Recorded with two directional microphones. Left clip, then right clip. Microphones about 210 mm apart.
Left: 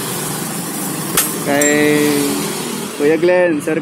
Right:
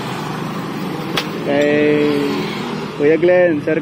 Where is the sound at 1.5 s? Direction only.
20° left (ahead or behind).